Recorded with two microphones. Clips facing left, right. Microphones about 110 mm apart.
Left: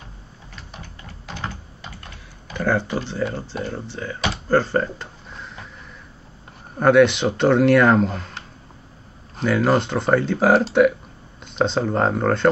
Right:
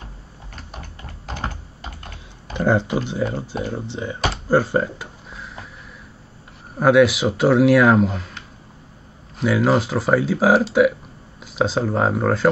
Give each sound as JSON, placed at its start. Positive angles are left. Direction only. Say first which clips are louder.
{"t": 0.6, "sound": "a sound", "louder": "right 2 dB", "side_deg": -50}
{"t": 1.5, "sound": "typing", "louder": "right 1 dB", "side_deg": -45}
{"t": 2.5, "sound": "speech", "louder": "right 3 dB", "side_deg": -20}
{"t": 4.5, "sound": "a sound", "louder": "right 1 dB", "side_deg": -10}
{"t": 6.8, "sound": "speech", "louder": "even", "side_deg": -5}
{"t": 9.4, "sound": "speech", "louder": "right 1 dB", "side_deg": -5}